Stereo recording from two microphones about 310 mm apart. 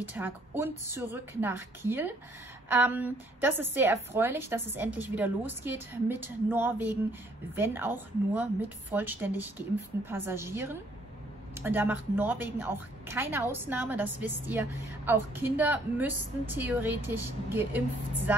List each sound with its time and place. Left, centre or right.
0.1 s a woman's voice: centre